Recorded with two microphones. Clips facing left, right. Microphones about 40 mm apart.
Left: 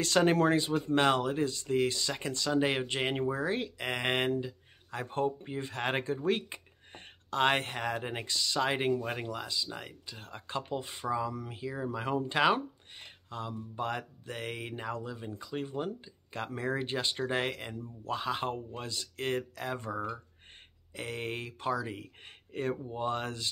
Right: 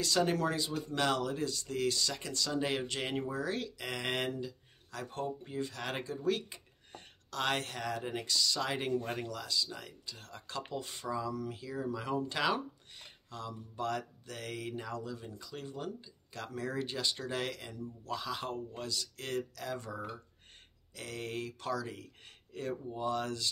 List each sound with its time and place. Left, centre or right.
0.0 s speech: left